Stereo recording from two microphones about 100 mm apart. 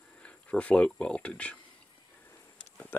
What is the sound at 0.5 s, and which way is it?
Speech, 10° left (ahead or behind).